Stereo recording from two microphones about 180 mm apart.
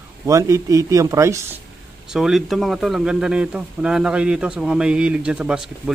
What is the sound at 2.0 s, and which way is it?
Speech, 5° right (ahead or behind).